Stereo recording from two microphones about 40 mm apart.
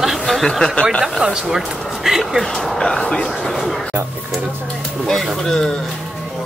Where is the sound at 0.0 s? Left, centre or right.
Centre.